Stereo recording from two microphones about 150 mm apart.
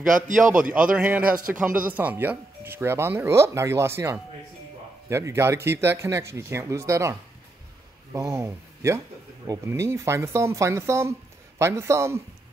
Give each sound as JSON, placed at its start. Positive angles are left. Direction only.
{"t": 0.1, "sound": "a man's voice", "side_deg": -60}
{"t": 0.9, "sound": "speech", "side_deg": -10}